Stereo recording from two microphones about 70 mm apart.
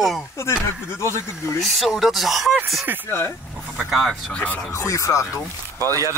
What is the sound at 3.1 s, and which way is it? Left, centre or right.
Speech, left.